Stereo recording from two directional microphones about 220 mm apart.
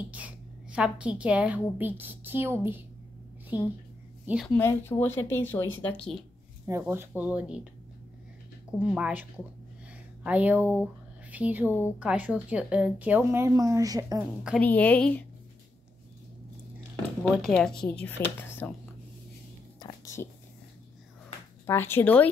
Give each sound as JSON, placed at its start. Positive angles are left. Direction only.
{"t": 0.1, "sound": "a woman's voice", "side_deg": -5}
{"t": 4.6, "sound": "speech", "side_deg": 10}
{"t": 6.6, "sound": "a woman's voice", "side_deg": -10}
{"t": 8.7, "sound": "a woman's voice", "side_deg": -5}
{"t": 14.4, "sound": "speech", "side_deg": 5}
{"t": 17.5, "sound": "speech", "side_deg": 5}
{"t": 19.8, "sound": "a sound", "side_deg": 15}
{"t": 21.6, "sound": "speech", "side_deg": 10}